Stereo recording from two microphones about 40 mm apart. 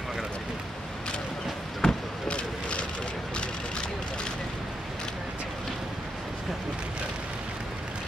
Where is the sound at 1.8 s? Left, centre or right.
Centre.